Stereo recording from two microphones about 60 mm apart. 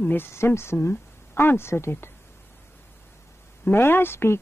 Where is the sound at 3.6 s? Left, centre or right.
Left.